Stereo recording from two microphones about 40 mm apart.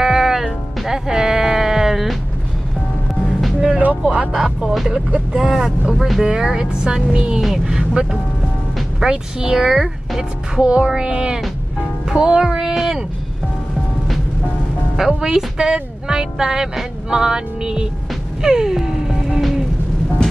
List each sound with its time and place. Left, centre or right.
0.0 s music: centre
4.0 s speech: right
4.3 s speech: centre
5.5 s speech: centre
6.2 s speech: centre
7.3 s speech: centre
9.7 s speech: centre
10.6 s speech: right
15.1 s speech: centre
18.4 s music: centre